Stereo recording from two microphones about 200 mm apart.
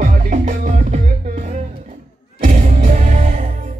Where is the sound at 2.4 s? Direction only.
40° right (ahead or behind).